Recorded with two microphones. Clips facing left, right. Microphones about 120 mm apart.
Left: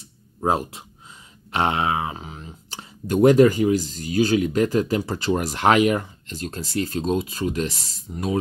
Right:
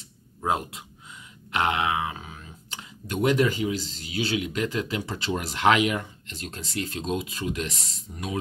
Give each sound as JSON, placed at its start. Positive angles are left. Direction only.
{"t": 0.4, "sound": "speech", "side_deg": 35}
{"t": 8.1, "sound": "speech", "side_deg": 20}